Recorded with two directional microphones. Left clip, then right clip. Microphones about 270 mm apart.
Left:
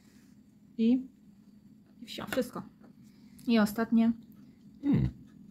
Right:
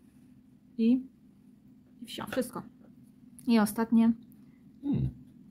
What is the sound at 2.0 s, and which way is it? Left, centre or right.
A woman's voice, centre.